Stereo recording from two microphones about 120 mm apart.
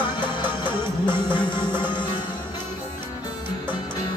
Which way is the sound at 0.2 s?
40° left (ahead or behind).